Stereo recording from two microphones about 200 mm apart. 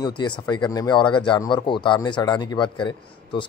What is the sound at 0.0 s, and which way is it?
Speech, 20° left (ahead or behind).